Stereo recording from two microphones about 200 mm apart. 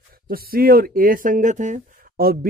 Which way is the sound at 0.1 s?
45° right (ahead or behind).